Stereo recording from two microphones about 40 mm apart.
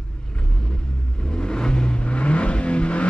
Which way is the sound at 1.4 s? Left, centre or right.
Left.